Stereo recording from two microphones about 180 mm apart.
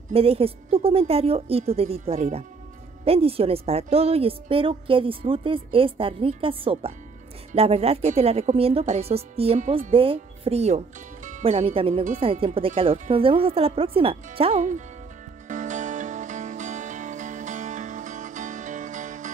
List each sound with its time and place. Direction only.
0.1 s a woman's voice: 35° right (ahead or behind)
15.4 s music: 45° right (ahead or behind)